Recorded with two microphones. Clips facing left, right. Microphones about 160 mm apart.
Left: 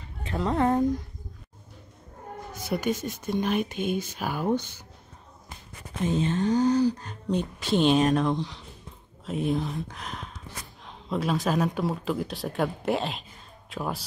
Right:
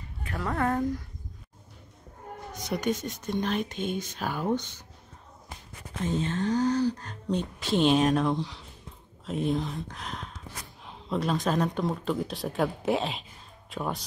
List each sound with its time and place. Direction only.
0.2 s speech: 20° left (ahead or behind)
2.5 s speech: 5° left (ahead or behind)
6.0 s speech: 15° left (ahead or behind)